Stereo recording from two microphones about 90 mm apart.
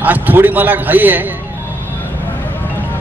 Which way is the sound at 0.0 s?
20° right (ahead or behind).